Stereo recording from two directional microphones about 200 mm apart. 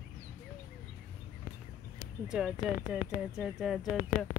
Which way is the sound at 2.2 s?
5° right (ahead or behind).